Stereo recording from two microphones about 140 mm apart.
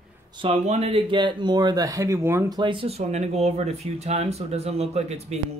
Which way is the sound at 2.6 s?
40° right (ahead or behind).